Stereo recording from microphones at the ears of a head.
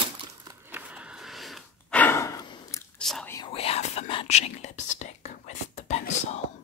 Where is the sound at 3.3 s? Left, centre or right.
Left.